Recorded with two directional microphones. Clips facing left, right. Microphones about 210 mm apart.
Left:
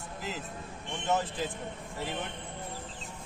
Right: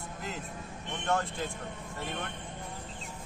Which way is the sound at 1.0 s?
5° left (ahead or behind).